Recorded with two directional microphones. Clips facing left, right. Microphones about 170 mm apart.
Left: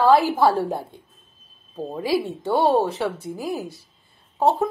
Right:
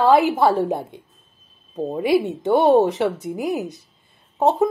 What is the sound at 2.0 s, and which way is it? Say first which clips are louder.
A woman's voice: right 4 dB; 20° right (ahead or behind).